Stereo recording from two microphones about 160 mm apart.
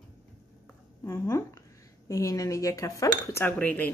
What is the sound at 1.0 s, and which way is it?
Speech, 20° left (ahead or behind).